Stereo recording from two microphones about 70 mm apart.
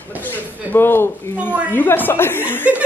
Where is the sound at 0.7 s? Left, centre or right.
Left.